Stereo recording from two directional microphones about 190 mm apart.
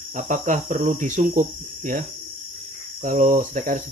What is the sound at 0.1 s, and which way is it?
Speech, 40° right (ahead or behind).